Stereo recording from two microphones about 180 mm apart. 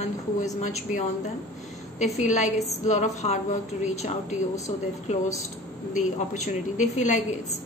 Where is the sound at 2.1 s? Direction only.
40° left (ahead or behind).